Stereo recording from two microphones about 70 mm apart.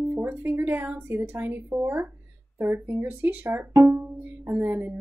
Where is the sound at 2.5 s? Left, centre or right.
Right.